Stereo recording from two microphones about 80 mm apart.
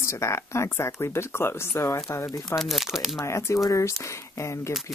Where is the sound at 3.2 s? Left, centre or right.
Left.